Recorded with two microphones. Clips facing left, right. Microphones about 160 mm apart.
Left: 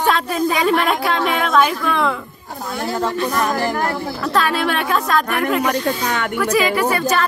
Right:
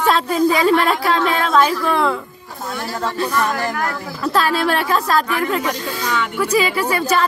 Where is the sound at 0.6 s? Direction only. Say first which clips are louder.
Right 2 dB; 5° left (ahead or behind).